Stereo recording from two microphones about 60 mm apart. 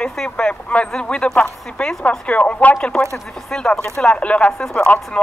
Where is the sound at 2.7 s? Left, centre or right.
Centre.